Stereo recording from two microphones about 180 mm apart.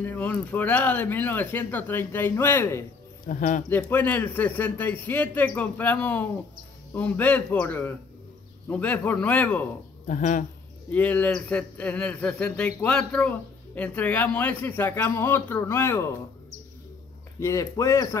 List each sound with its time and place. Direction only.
0.0 s a man's voice: 10° left (ahead or behind)
3.3 s speech: 45° left (ahead or behind)
3.6 s a man's voice: 10° left (ahead or behind)
10.0 s speech: 45° left (ahead or behind)
10.9 s a man's voice: 10° left (ahead or behind)
17.4 s a man's voice: 15° left (ahead or behind)